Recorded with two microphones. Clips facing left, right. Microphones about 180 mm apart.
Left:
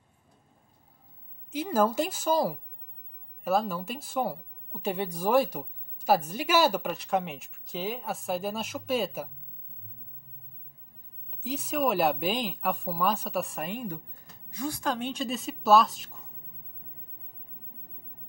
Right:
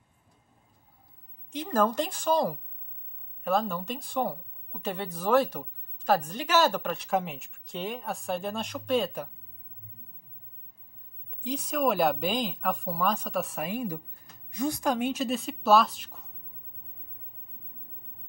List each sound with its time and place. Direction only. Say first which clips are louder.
1.5 s speech: left 1 dB; 5° left (ahead or behind)
11.4 s speech: right 1 dB; 5° left (ahead or behind)
14.5 s speech: right 3 dB; 20° right (ahead or behind); by 16.3 s centre (ahead or behind)